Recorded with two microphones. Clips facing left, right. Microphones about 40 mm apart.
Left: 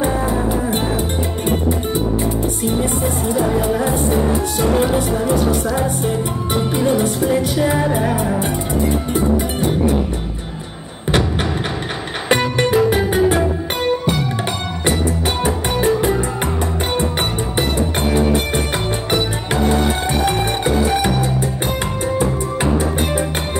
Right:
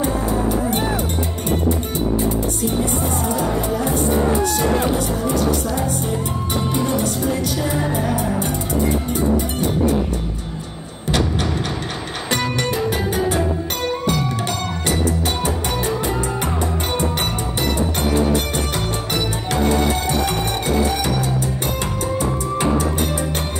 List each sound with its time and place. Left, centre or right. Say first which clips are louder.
3.3 s speech: left 4 dB; left
4.6 s music: left 2 dB; left
6.5 s music: left 4 dB; centre
12.3 s music: left 6 dB; left
15.4 s music: left 5 dB; left
19.0 s music: left 3 dB; left